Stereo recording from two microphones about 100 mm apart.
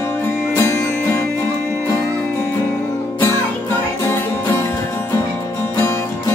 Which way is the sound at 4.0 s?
25° left (ahead or behind).